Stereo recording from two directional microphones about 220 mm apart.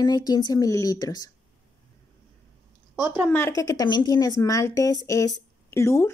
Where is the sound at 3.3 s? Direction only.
10° left (ahead or behind).